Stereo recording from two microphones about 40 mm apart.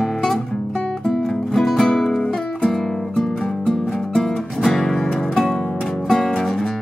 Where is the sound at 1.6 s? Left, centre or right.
Centre.